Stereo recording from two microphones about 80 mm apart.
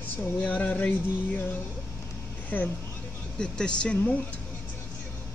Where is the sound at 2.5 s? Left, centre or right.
Left.